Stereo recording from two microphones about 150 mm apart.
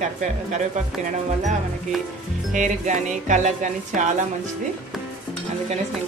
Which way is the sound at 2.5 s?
55° right (ahead or behind).